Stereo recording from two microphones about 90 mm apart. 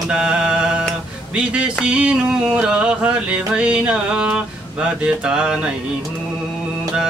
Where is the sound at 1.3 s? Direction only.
10° right (ahead or behind).